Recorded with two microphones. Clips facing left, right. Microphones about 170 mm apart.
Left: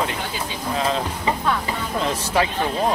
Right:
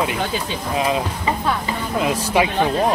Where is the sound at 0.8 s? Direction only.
10° right (ahead or behind).